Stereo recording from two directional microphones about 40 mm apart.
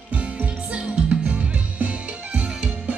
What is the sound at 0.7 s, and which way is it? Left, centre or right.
Music, right.